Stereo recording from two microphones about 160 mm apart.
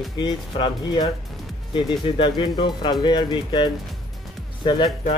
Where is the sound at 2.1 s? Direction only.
30° left (ahead or behind).